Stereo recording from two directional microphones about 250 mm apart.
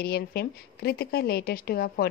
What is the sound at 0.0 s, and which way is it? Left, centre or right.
Speech, left.